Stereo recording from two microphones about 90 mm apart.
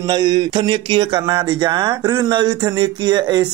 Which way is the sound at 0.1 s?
55° right (ahead or behind).